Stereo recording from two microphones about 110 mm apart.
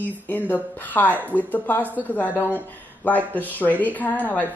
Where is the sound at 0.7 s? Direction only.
15° left (ahead or behind).